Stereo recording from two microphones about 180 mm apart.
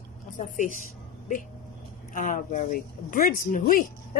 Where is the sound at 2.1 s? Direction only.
45° left (ahead or behind).